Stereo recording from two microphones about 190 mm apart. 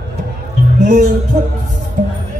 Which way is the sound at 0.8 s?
40° right (ahead or behind).